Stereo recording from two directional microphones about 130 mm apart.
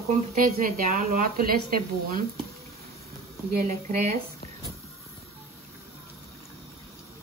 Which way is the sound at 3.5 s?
85° right.